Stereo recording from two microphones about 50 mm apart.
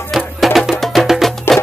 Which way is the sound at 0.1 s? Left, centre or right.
Centre.